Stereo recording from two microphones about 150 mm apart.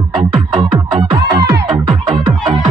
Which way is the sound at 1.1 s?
25° right (ahead or behind).